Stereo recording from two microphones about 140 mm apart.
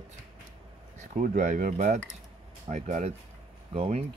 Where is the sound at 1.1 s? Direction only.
65° right (ahead or behind); by 4.1 s 45° right (ahead or behind).